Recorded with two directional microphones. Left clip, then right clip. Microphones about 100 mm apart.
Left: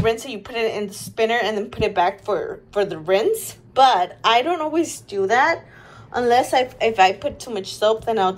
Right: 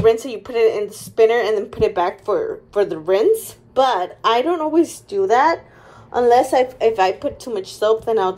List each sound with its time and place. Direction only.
0.0 s speech: 35° right (ahead or behind)
5.1 s a woman's voice: 60° right (ahead or behind); by 8.4 s 35° right (ahead or behind)